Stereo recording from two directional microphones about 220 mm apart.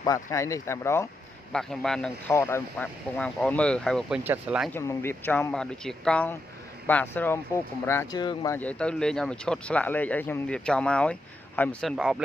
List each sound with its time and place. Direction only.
0.0 s speech: 15° left (ahead or behind)
1.5 s speech: centre (ahead or behind)
4.7 s speech: 10° left (ahead or behind)
8.5 s speech: 5° left (ahead or behind)